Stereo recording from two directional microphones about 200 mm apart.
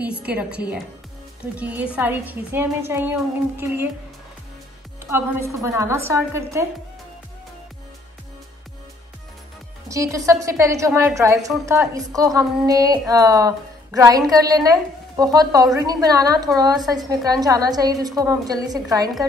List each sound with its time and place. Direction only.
0.0 s a woman's voice: 5° right (ahead or behind)
5.1 s a woman's voice: 10° right (ahead or behind)
9.8 s a woman's voice: 15° right (ahead or behind)